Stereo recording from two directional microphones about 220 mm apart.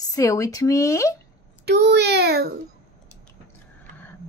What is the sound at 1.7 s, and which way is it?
Speech, 50° right (ahead or behind).